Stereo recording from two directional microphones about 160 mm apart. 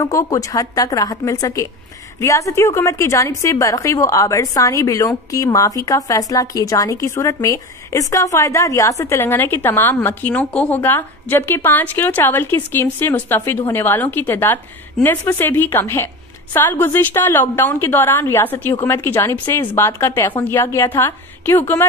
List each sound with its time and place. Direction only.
0.0 s a woman's voice: 20° left (ahead or behind)